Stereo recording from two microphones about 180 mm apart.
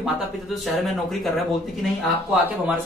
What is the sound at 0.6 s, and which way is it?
Speech, centre (ahead or behind).